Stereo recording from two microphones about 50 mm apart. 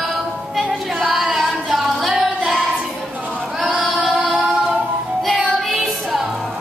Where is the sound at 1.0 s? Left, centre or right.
Centre.